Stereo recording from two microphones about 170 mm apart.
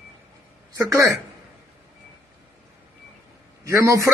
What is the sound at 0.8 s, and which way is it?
Speech, 20° right (ahead or behind).